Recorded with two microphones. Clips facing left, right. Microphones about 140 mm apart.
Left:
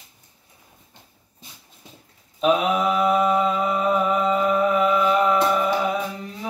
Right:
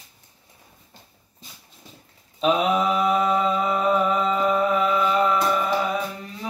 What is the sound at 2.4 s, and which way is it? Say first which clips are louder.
Mantra: left 1 dB; 5° left (ahead or behind).